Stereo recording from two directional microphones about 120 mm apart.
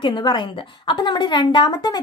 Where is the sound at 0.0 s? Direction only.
40° left (ahead or behind).